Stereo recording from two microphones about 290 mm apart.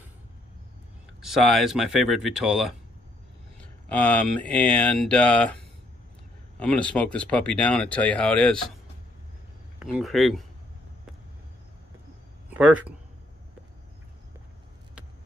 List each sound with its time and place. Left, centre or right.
1.2 s speech: centre
3.9 s speech: centre
6.6 s speech: centre
9.8 s speech: centre
12.4 s speech: centre